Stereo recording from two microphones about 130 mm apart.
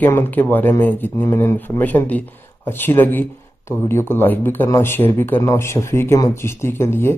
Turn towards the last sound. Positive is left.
turn(degrees=20)  # may be behind; listen again after turning